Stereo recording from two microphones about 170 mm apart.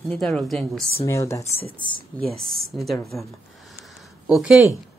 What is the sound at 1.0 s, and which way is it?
Speech, 15° left (ahead or behind).